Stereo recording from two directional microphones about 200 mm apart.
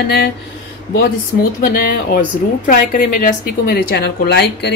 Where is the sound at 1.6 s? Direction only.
45° left (ahead or behind).